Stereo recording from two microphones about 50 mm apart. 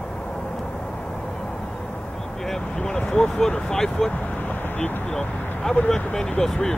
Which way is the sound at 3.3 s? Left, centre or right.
Centre.